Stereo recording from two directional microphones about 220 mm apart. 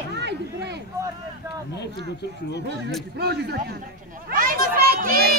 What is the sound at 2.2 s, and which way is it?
Speech, 50° left (ahead or behind).